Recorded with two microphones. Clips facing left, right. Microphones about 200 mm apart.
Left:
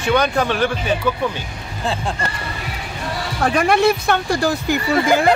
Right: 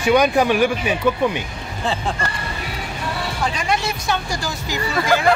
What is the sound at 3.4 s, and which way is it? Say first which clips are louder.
Speech: left 9 dB; 55° left (ahead or behind).